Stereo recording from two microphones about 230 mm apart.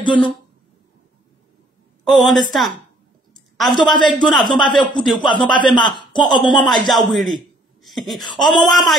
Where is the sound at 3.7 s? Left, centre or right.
Centre.